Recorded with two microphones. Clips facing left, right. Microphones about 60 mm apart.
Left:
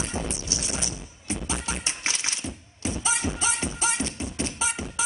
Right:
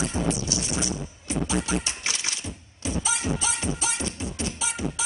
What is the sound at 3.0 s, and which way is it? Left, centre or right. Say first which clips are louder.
Music: left 2 dB; left.